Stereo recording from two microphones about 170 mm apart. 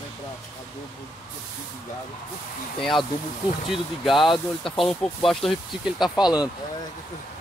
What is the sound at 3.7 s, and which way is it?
Speech, centre (ahead or behind).